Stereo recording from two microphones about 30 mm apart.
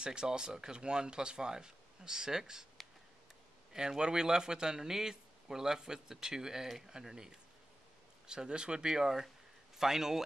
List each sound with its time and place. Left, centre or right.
0.0 s speech: right
3.7 s speech: right
8.9 s speech: centre